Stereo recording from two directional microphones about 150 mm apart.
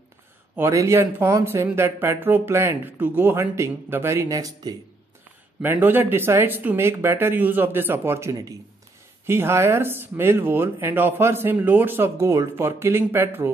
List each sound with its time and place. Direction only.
0.6 s speech: 20° right (ahead or behind)